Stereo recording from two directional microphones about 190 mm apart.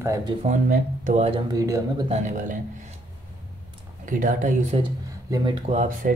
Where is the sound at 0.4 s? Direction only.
45° right (ahead or behind).